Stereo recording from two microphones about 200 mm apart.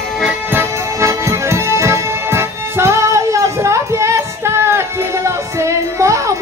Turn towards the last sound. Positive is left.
turn(degrees=-15)  # may be behind; listen again after turning